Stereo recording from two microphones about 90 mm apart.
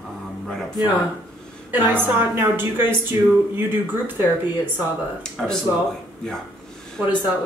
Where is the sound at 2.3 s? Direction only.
25° right (ahead or behind).